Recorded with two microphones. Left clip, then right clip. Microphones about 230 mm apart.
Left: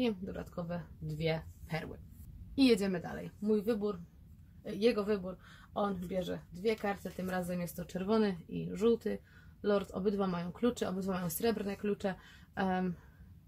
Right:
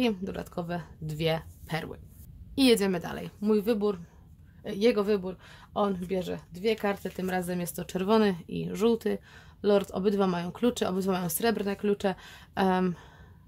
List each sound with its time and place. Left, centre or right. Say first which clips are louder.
0.0 s speech: right 6 dB; right